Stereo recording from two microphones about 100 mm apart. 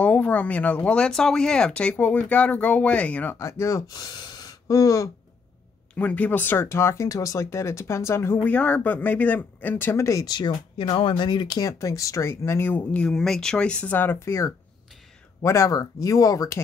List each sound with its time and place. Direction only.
0.0 s speech: 15° left (ahead or behind)
3.3 s speech: 30° left (ahead or behind)
5.9 s speech: 15° left (ahead or behind)
8.5 s speech: 15° left (ahead or behind)
10.0 s speech: 40° left (ahead or behind)
10.8 s speech: 60° left (ahead or behind); by 16.6 s 30° left (ahead or behind)